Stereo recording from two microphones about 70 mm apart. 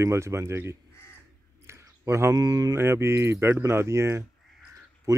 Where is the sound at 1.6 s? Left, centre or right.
Right.